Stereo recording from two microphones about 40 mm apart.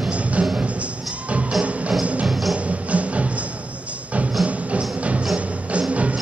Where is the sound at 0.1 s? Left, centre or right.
Right.